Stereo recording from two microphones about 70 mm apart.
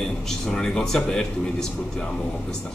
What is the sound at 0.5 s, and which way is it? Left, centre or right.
A man's voice, centre.